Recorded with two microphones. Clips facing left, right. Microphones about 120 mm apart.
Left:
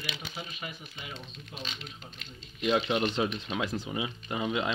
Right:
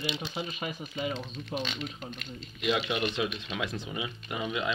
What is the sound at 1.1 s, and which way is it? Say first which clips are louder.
Speech: right 9 dB; 90° right.